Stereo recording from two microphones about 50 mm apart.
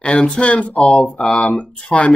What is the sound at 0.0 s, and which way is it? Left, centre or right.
Speech, left.